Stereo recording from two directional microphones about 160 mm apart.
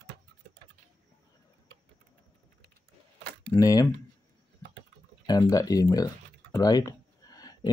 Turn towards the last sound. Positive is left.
turn(degrees=25)  # may be behind; listen again after turning